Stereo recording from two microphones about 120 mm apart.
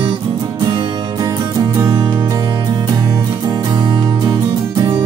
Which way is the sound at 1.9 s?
40° right (ahead or behind).